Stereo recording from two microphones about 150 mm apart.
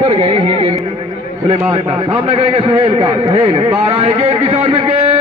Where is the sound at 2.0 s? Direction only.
35° right (ahead or behind).